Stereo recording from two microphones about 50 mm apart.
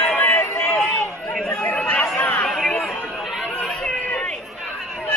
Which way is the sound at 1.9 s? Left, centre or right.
Left.